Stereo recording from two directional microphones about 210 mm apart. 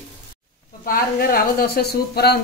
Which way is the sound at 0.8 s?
45° left (ahead or behind).